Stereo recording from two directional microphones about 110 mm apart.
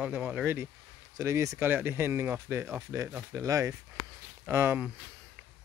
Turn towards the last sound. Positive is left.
turn(degrees=-20)  # may be behind; listen again after turning